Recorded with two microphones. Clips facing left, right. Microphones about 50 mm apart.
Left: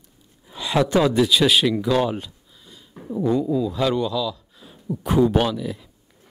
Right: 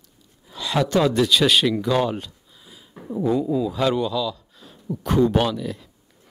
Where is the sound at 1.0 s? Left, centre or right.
Centre.